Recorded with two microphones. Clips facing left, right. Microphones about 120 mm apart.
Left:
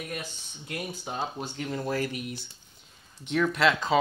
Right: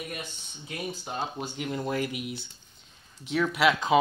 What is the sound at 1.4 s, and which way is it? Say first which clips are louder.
Speech: right 1 dB; 10° right (ahead or behind).